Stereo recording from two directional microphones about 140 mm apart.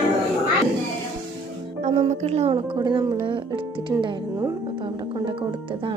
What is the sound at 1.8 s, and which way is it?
Music, 55° right (ahead or behind).